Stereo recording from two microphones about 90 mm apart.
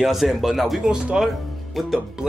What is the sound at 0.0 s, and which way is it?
Speech, centre (ahead or behind).